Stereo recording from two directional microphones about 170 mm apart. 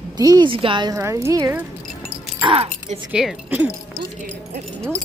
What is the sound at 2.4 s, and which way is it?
Speech, 30° right (ahead or behind).